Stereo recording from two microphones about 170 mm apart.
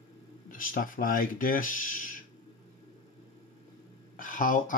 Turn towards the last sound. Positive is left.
turn(degrees=50)  # may be behind; listen again after turning